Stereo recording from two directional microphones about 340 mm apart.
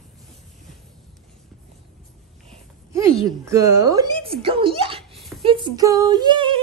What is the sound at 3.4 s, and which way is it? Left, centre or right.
Speech, centre.